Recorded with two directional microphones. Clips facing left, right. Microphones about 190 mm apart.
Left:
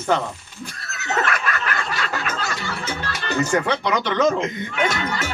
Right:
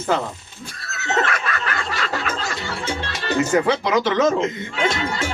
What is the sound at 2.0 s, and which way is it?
Music, 25° right (ahead or behind).